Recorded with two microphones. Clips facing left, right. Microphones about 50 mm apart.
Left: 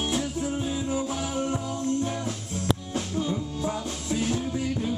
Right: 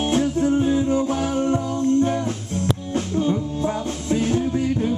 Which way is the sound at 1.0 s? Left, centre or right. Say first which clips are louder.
Right 7 dB; right.